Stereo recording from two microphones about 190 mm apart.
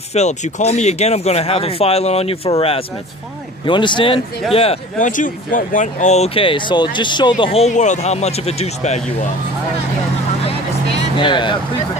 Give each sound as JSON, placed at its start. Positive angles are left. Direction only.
{"t": 0.1, "sound": "a man's voice", "side_deg": 35}
{"t": 5.0, "sound": "speech", "side_deg": 45}
{"t": 10.4, "sound": "vehicle", "side_deg": 30}